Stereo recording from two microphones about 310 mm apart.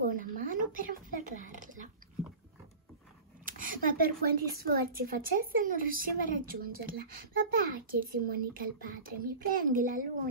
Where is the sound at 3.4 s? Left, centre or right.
Right.